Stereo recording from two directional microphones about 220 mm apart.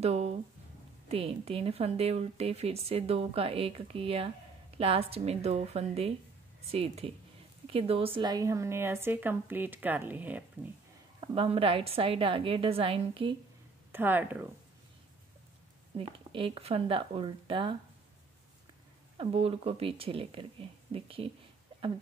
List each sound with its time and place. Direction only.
0.0 s a sound: 30° right (ahead or behind)
1.0 s a woman's voice: 25° right (ahead or behind); by 10.7 s 5° right (ahead or behind)
11.1 s speech: 25° right (ahead or behind)
13.9 s a woman's voice: 10° right (ahead or behind)
16.0 s speech: 25° right (ahead or behind)
19.1 s speech: 25° right (ahead or behind)